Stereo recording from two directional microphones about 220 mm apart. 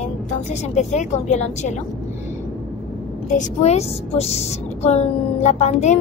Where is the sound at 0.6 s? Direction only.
30° left (ahead or behind).